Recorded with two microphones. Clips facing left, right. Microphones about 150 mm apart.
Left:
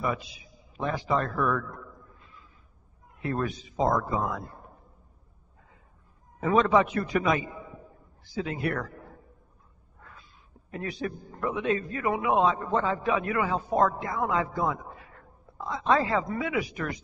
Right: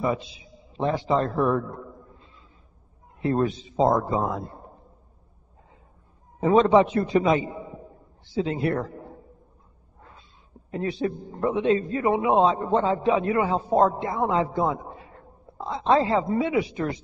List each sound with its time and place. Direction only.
0.0 s a man's voice: 25° right (ahead or behind)
6.4 s a man's voice: 25° right (ahead or behind)
9.9 s a sound: 25° right (ahead or behind)
10.7 s a man's voice: 25° right (ahead or behind)